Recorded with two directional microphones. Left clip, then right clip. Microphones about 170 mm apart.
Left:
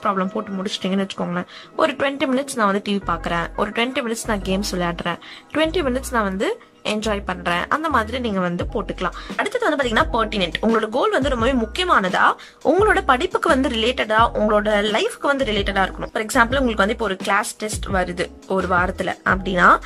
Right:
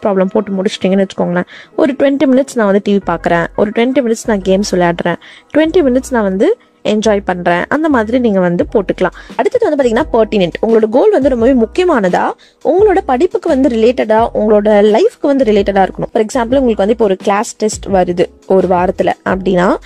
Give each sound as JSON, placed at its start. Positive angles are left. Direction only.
{"t": 0.0, "sound": "speech", "side_deg": -45}
{"t": 9.5, "sound": "speech", "side_deg": -35}